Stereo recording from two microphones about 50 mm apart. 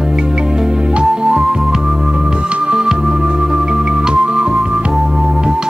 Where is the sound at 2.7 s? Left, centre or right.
Centre.